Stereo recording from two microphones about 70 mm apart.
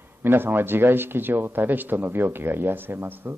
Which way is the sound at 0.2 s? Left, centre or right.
Right.